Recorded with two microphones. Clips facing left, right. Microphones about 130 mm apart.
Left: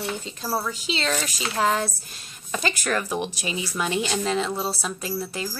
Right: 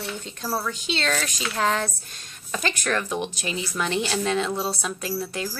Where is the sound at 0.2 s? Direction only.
5° left (ahead or behind).